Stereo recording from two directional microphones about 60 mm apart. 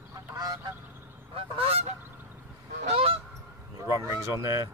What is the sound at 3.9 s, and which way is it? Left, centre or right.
Speech, right.